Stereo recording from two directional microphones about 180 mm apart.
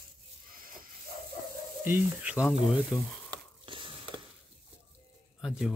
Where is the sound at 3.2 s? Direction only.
30° right (ahead or behind).